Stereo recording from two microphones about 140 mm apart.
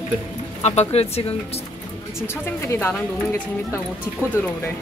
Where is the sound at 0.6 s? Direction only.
50° left (ahead or behind).